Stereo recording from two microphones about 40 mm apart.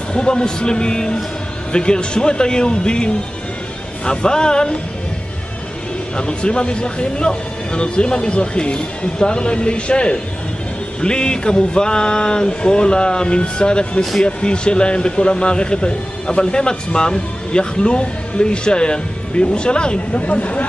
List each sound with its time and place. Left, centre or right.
0.1 s speech: left
6.1 s speech: left
20.2 s speech: left